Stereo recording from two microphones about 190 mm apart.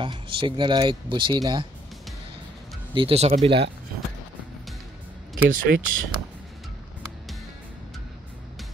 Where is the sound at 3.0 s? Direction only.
30° right (ahead or behind).